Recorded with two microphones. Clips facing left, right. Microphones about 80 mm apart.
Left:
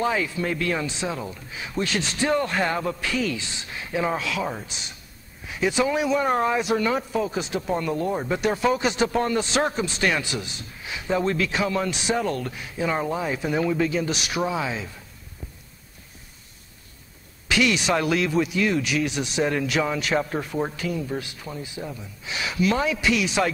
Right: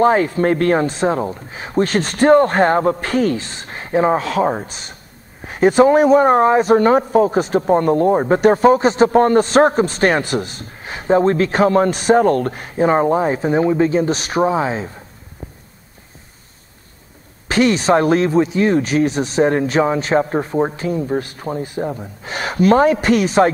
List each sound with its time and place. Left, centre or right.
0.0 s speech: right
15.4 s a sound: right
17.5 s speech: right